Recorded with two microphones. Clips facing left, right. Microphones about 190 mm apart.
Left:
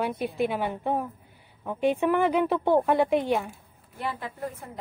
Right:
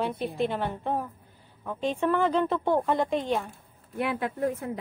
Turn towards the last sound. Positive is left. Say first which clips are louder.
# right 7 dB
turn(degrees=-65)  # may be behind; listen again after turning